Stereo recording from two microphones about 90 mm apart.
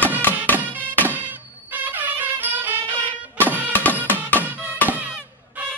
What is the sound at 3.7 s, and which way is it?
Music, 20° left (ahead or behind).